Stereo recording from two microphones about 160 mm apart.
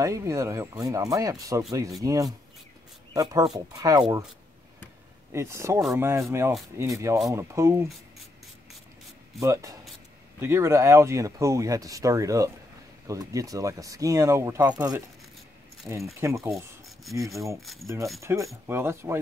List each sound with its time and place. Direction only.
0.0 s speech: 20° right (ahead or behind)
5.3 s speech: 15° right (ahead or behind)
9.4 s speech: 20° right (ahead or behind)
17.8 s speech: 15° right (ahead or behind)